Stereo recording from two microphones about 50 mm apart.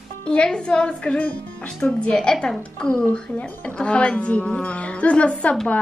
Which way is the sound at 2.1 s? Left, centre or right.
Centre.